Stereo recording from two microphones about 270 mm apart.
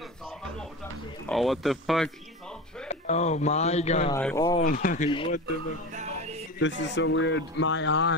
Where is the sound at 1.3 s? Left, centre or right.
Centre.